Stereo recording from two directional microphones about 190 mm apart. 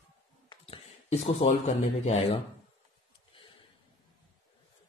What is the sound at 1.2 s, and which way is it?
Speech, 35° left (ahead or behind).